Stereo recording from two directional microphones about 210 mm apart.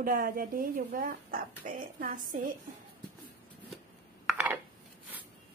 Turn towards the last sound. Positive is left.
turn(degrees=-5)  # may be behind; listen again after turning